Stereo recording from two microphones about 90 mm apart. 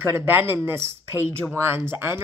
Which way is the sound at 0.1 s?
25° right (ahead or behind).